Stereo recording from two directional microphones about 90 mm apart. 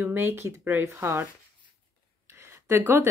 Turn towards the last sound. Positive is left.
turn(degrees=-30)  # may be behind; listen again after turning